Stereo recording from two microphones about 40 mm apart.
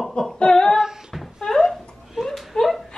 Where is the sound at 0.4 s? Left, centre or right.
Centre.